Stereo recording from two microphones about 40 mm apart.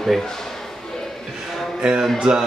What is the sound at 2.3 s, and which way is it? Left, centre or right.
Speech, right.